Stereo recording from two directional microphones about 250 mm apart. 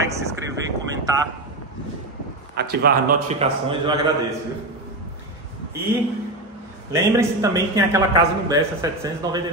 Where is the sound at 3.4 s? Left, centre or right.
Right.